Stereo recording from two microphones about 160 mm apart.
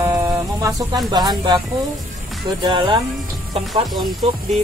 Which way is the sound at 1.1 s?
25° right (ahead or behind).